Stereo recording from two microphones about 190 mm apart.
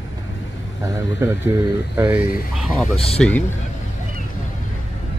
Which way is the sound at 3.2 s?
5° left (ahead or behind).